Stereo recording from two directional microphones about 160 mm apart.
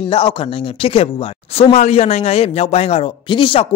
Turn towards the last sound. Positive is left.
turn(degrees=35)  # may be behind; listen again after turning